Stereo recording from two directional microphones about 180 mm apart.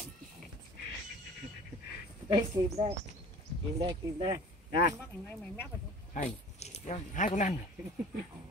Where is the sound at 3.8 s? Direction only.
30° right (ahead or behind).